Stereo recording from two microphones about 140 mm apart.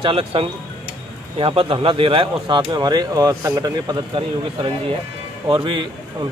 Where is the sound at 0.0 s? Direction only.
40° right (ahead or behind).